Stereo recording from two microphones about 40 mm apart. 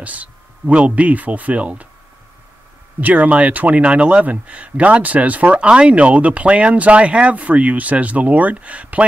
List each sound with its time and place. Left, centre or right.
0.0 s speech: right
3.0 s speech: right